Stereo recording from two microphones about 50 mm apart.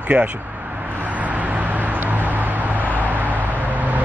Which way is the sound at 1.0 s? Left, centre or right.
Right.